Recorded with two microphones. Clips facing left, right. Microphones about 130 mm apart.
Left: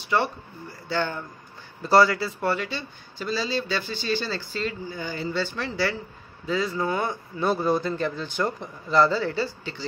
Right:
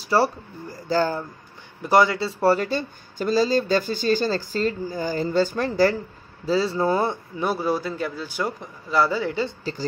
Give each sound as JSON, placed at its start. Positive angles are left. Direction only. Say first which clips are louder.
{"t": 0.0, "sound": "speech", "louder": "right 4 dB", "side_deg": -35}
{"t": 1.8, "sound": "a man's voice", "louder": "even", "side_deg": -15}
{"t": 2.4, "sound": "speech", "louder": "right 9 dB", "side_deg": -40}
{"t": 6.4, "sound": "speech", "louder": "right 5 dB", "side_deg": -30}
{"t": 7.3, "sound": "speech", "louder": "left 2 dB", "side_deg": -10}